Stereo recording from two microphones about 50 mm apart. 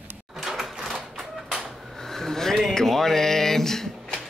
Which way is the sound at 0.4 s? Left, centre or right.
Centre.